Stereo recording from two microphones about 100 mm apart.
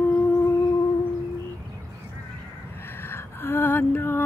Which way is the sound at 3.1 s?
20° left (ahead or behind).